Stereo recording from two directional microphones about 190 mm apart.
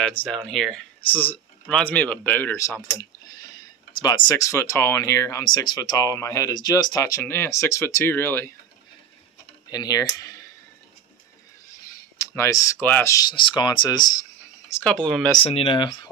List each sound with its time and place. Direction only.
0.0 s speech: 5° left (ahead or behind)
9.7 s speech: 20° left (ahead or behind)
12.2 s speech: 15° left (ahead or behind)
14.7 s speech: 10° left (ahead or behind)
15.4 s speech: 30° left (ahead or behind)